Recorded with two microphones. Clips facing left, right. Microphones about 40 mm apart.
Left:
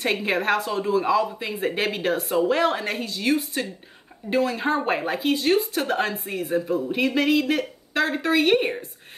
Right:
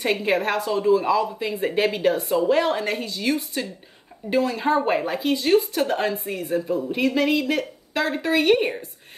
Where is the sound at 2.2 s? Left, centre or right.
Left.